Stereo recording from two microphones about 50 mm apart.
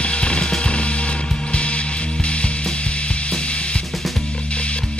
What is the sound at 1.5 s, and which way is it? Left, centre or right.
Ratchet, left.